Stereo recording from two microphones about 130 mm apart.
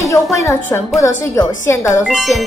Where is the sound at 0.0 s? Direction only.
25° left (ahead or behind).